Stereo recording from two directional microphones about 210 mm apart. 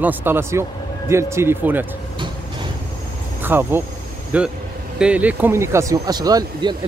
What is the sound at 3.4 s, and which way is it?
Speech, 10° right (ahead or behind).